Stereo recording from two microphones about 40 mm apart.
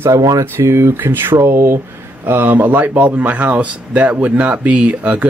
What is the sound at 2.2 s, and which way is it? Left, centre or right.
Speech, right.